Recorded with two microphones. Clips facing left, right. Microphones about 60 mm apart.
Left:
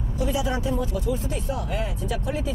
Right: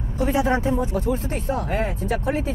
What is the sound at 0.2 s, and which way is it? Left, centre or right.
Speech, right.